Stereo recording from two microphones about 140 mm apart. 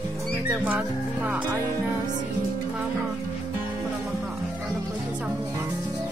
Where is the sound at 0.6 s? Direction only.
10° right (ahead or behind).